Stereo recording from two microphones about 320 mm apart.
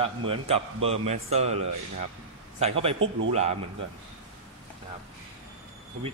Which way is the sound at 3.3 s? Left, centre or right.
Centre.